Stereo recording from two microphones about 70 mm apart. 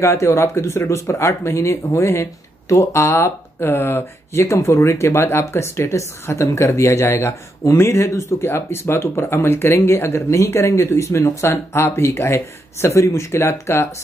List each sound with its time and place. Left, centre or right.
0.0 s speech: left